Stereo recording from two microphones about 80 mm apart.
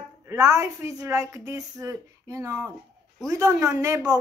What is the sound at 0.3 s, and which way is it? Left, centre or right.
A woman's voice, right.